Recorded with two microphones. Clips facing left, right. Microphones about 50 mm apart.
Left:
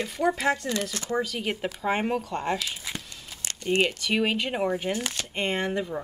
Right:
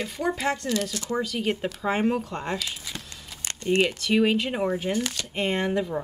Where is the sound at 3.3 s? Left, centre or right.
Centre.